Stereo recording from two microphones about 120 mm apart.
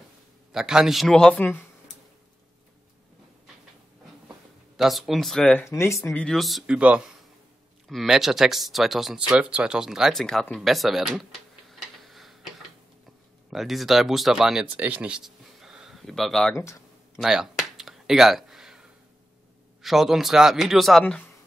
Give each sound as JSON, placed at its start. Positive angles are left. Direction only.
{"t": 0.5, "sound": "speech", "side_deg": -5}
{"t": 1.4, "sound": "speech", "side_deg": 20}
{"t": 4.7, "sound": "speech", "side_deg": 0}
{"t": 5.6, "sound": "speech", "side_deg": 20}
{"t": 6.1, "sound": "speech", "side_deg": 5}
{"t": 11.7, "sound": "tick-tock", "side_deg": 0}
{"t": 13.5, "sound": "speech", "side_deg": 0}
{"t": 16.5, "sound": "speech", "side_deg": 25}
{"t": 17.2, "sound": "a sound", "side_deg": -5}
{"t": 19.8, "sound": "speech", "side_deg": 0}
{"t": 21.0, "sound": "speech", "side_deg": 15}